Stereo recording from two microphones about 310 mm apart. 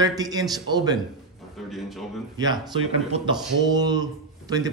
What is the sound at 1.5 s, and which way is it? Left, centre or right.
Speech, centre.